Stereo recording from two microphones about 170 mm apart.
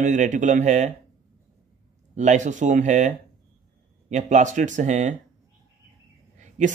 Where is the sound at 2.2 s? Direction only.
45° right (ahead or behind).